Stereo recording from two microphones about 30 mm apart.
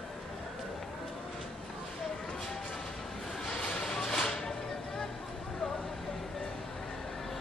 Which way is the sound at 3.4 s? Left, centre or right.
Left.